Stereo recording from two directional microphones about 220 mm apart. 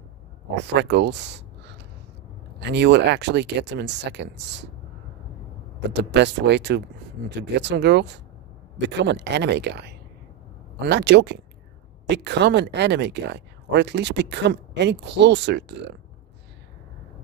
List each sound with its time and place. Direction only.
0.7 s speech: 50° right (ahead or behind)
5.8 s speech: 50° right (ahead or behind)